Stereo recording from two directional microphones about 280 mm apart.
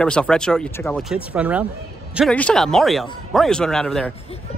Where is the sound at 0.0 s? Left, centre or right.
Centre.